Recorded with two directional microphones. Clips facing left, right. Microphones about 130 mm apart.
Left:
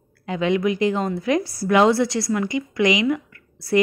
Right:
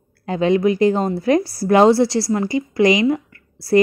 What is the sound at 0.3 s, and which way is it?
A woman's voice, 35° right (ahead or behind).